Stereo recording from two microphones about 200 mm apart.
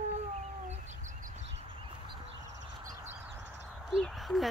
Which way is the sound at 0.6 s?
35° right (ahead or behind).